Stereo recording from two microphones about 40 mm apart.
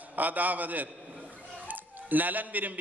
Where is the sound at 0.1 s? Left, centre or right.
Right.